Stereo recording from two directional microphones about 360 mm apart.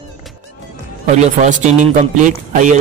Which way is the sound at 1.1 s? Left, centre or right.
Centre.